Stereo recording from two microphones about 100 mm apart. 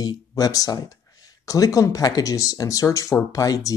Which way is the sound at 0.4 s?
35° left (ahead or behind).